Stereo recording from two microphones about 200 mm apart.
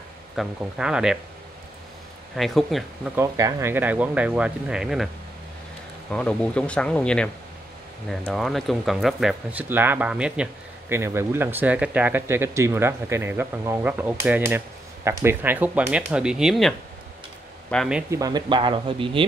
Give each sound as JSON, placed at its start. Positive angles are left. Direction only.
{"t": 0.4, "sound": "speech", "side_deg": -5}
{"t": 2.3, "sound": "speech", "side_deg": 0}
{"t": 3.2, "sound": "speech", "side_deg": -15}
{"t": 6.1, "sound": "speech", "side_deg": 5}
{"t": 8.3, "sound": "speech", "side_deg": 0}
{"t": 18.1, "sound": "speech", "side_deg": -20}